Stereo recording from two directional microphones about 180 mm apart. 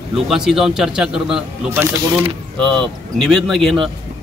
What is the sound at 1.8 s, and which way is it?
Speech, 15° right (ahead or behind).